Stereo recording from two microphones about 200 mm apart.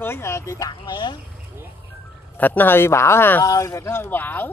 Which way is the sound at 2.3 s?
10° left (ahead or behind).